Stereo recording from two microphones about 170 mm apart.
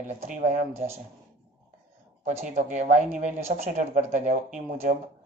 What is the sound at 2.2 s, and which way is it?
Speech, 45° right (ahead or behind).